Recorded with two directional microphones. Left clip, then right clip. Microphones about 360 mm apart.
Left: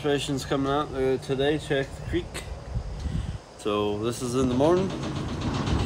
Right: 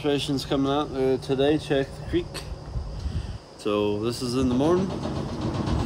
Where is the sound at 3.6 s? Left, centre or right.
Centre.